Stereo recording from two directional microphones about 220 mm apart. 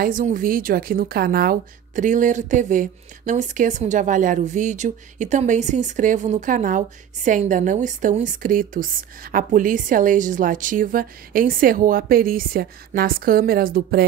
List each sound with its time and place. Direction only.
0.0 s a woman's voice: 35° right (ahead or behind)